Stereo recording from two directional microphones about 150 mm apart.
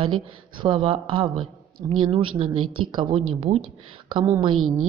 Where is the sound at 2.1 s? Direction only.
40° right (ahead or behind).